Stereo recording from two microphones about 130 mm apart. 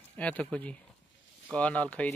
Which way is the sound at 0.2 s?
10° left (ahead or behind).